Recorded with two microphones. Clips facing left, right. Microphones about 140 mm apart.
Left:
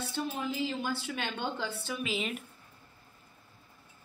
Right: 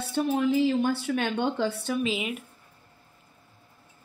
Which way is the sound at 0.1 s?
65° right (ahead or behind).